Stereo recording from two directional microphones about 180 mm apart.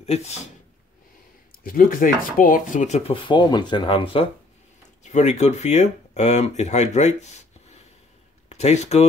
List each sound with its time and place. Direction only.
0.0 s speech: 35° left (ahead or behind)
1.6 s speech: 55° left (ahead or behind)
3.2 s speech: 25° left (ahead or behind)
5.0 s speech: 40° left (ahead or behind)